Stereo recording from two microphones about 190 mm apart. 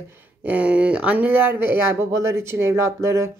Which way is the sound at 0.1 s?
5° right (ahead or behind).